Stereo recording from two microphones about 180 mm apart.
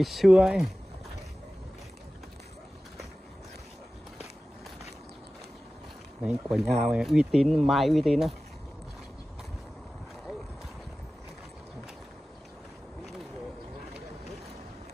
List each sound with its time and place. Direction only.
0.0 s speech: centre (ahead or behind)
6.2 s speech: centre (ahead or behind)